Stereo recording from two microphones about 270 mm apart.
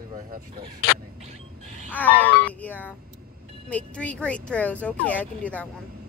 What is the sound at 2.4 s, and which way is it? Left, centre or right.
Music, centre.